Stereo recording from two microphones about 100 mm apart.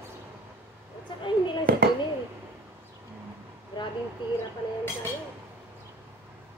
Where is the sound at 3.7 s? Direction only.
50° left (ahead or behind).